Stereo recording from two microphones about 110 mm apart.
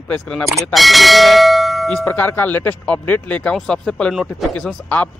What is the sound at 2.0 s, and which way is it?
Speech, 15° left (ahead or behind).